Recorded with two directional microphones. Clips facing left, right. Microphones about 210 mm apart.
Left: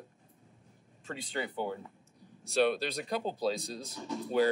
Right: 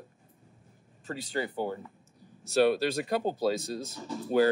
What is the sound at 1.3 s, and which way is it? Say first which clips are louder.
Speech: right 3 dB; 40° right (ahead or behind).